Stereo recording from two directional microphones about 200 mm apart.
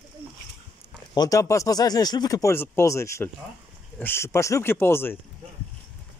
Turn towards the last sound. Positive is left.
turn(degrees=10)  # may be behind; listen again after turning